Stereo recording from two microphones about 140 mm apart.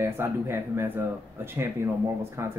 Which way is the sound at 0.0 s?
20° right (ahead or behind).